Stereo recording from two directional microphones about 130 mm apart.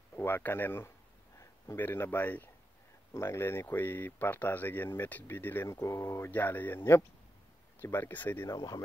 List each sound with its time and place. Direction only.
0.1 s speech: 15° left (ahead or behind)
8.5 s speech: 30° left (ahead or behind)